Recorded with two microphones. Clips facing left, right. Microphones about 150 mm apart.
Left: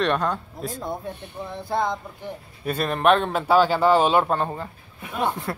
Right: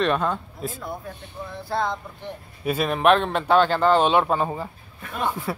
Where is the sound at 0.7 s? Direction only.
30° left (ahead or behind).